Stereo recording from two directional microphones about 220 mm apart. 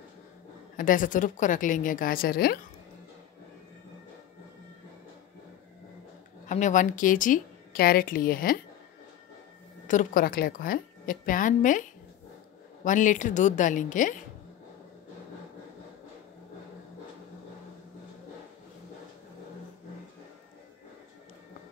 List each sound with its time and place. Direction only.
0.7 s a woman's voice: 40° left (ahead or behind)
6.4 s a woman's voice: 35° left (ahead or behind)
9.8 s a woman's voice: 35° left (ahead or behind)
12.8 s a woman's voice: 35° left (ahead or behind)